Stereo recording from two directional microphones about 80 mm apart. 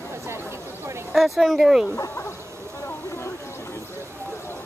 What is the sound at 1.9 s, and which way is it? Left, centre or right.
Speech, left.